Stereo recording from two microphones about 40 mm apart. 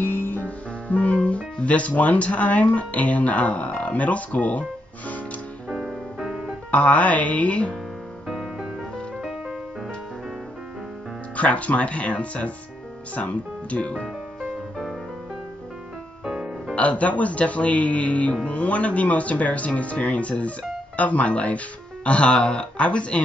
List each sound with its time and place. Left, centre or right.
0.0 s music: left
0.4 s speech: left
5.7 s music: centre
6.7 s speech: left
8.3 s music: centre
11.3 s speech: left
16.3 s music: centre
16.7 s speech: left